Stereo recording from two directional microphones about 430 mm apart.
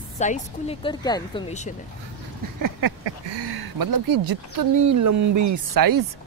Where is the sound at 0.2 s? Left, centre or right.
Centre.